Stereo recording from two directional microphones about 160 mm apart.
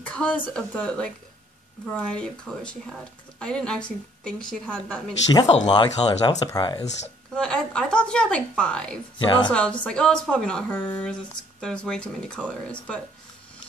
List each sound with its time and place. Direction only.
0.0 s speech: 5° left (ahead or behind)
5.5 s speech: 30° left (ahead or behind)
7.3 s a woman's voice: 5° left (ahead or behind)
9.2 s speech: 30° left (ahead or behind)
9.5 s a woman's voice: 5° left (ahead or behind)